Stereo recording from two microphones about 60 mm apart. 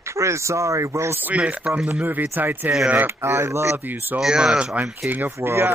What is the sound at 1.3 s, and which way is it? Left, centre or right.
Speech, right.